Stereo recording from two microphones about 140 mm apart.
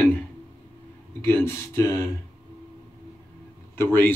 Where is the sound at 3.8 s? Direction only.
15° left (ahead or behind).